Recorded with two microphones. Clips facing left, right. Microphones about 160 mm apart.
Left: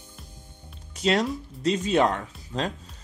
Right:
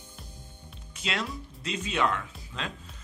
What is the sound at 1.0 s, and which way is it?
Speech, 40° left (ahead or behind).